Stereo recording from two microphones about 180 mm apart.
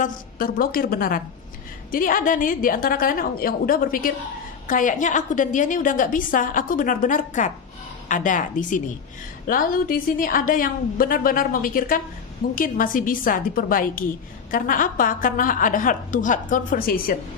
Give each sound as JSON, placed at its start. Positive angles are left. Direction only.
{"t": 0.0, "sound": "a woman's voice", "side_deg": 50}